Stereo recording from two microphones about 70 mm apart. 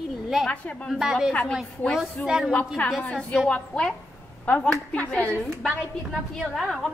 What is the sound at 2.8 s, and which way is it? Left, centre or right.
Speech, left.